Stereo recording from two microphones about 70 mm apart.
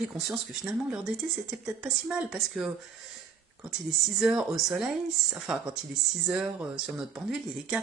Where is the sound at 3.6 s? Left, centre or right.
Centre.